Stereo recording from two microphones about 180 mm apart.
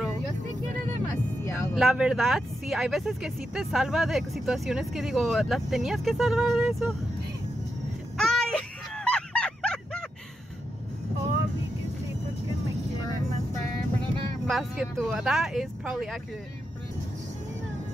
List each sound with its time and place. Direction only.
1.4 s vehicle: 15° left (ahead or behind)
1.8 s speech: 5° right (ahead or behind)
8.2 s a sound: centre (ahead or behind)
14.4 s speech: centre (ahead or behind)